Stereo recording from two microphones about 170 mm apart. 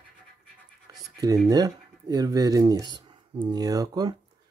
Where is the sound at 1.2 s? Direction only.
20° right (ahead or behind).